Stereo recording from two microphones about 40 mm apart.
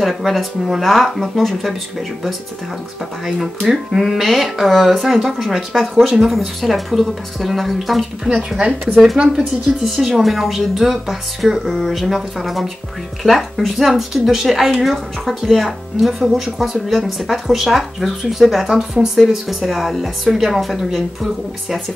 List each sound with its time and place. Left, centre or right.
0.0 s speech: centre
3.6 s speech: centre
4.0 s speech: centre
8.5 s speech: right
9.7 s speech: centre
19.4 s speech: centre